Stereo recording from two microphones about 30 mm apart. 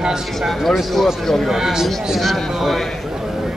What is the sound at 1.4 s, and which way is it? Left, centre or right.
Speech, centre.